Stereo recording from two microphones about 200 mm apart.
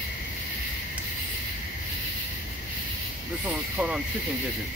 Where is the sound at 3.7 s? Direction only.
5° right (ahead or behind).